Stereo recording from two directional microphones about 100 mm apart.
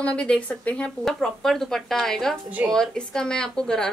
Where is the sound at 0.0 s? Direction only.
10° left (ahead or behind).